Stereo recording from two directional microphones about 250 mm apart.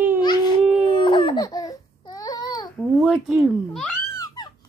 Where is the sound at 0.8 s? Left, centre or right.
Centre.